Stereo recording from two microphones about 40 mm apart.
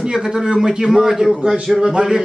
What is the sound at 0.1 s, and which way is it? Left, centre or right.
A man's voice, centre.